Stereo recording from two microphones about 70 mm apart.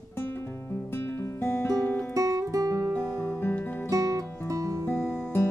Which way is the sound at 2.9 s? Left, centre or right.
Left.